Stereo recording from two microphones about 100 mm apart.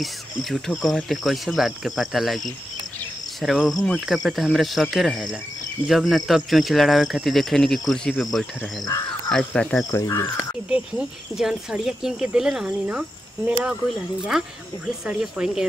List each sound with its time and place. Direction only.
0.0 s speech: centre (ahead or behind)
8.8 s speech: 40° left (ahead or behind)
9.3 s speech: 5° left (ahead or behind)
9.9 s speech: 30° left (ahead or behind)
10.7 s speech: 5° right (ahead or behind)
15.0 s speech: 10° right (ahead or behind)